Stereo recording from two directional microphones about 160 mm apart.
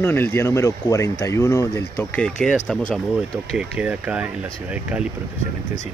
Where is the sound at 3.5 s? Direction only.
10° right (ahead or behind).